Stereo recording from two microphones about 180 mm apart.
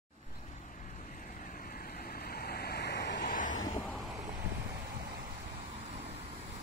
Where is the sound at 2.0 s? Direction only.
60° left (ahead or behind).